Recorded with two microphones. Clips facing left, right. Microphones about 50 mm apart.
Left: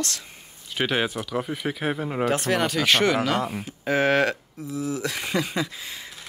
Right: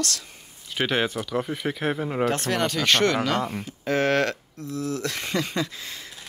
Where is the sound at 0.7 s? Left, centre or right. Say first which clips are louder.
Even; centre.